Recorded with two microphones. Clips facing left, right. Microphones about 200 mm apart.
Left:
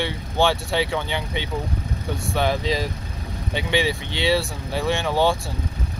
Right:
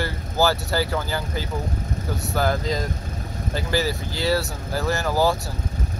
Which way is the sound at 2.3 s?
Centre (ahead or behind).